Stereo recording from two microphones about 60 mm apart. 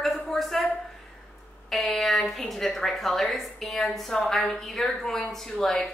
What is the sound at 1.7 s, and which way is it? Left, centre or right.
A woman's voice, centre.